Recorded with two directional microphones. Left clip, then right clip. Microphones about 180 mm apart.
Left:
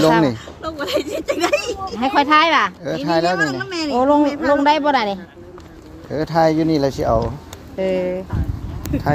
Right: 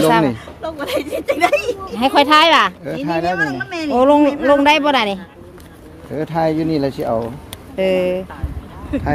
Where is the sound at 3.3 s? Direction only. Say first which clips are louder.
Even; centre (ahead or behind).